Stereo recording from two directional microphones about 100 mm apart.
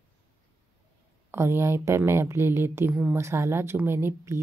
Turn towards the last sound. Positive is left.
turn(degrees=-25)  # may be behind; listen again after turning